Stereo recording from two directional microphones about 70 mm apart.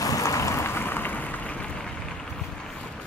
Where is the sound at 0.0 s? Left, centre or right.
Left.